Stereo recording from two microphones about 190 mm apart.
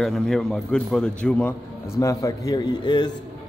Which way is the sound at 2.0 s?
15° left (ahead or behind).